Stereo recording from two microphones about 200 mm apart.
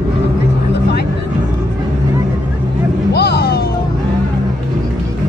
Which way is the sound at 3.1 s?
55° left (ahead or behind).